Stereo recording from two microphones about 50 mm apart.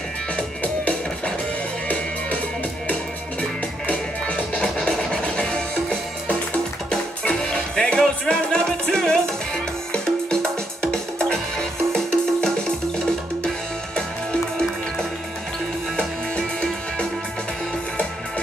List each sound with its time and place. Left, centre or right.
0.6 s music: left
3.8 s music: left
7.2 s music: left
10.8 s music: centre